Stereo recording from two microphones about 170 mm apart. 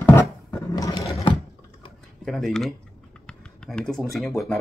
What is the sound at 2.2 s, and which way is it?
Speech, centre (ahead or behind).